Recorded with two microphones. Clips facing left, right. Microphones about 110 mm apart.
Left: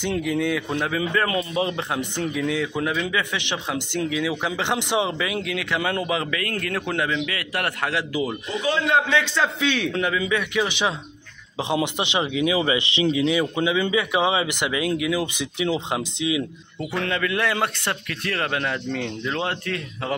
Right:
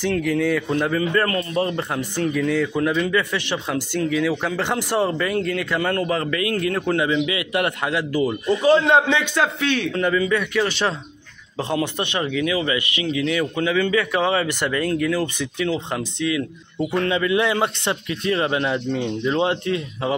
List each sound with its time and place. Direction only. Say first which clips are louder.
0.1 s a man's voice: right 2 dB; 5° left (ahead or behind)
4.6 s a man's voice: right 1 dB; 5° right (ahead or behind)
8.0 s speech: right 4 dB; 10° left (ahead or behind)
8.6 s a man's voice: right 6 dB; 35° right (ahead or behind)
9.1 s speech: right 1 dB; 15° right (ahead or behind)
9.6 s a man's voice: right 2 dB; 5° left (ahead or behind)
16.9 s a man's voice: right 4 dB; 5° right (ahead or behind)